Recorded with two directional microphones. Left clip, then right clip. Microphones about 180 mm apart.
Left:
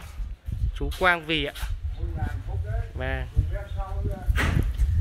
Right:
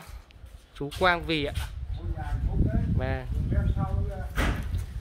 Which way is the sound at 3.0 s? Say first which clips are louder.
Left 4 dB; 5° right (ahead or behind).